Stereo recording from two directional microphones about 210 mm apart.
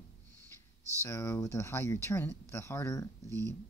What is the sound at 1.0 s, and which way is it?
Speech, 15° left (ahead or behind).